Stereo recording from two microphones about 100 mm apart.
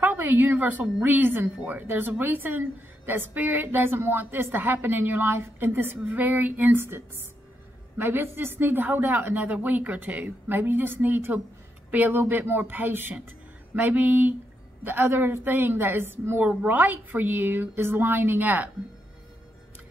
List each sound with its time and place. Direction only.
0.0 s a woman's voice: 20° right (ahead or behind)